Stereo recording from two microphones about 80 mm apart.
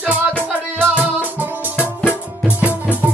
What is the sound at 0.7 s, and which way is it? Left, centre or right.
Music, centre.